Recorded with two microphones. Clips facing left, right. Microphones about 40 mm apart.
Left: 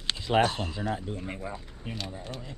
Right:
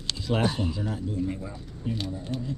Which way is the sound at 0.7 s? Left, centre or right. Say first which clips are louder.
Right 1 dB; left.